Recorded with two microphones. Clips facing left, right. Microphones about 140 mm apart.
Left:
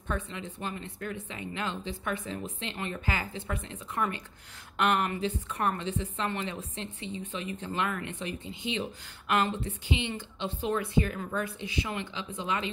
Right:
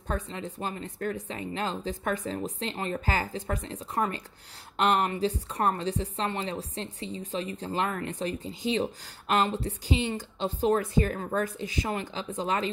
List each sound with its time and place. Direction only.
0.1 s a woman's voice: 35° right (ahead or behind)